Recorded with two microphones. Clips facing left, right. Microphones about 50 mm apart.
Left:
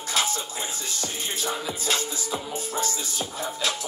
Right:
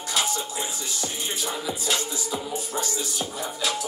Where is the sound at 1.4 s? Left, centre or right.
Left.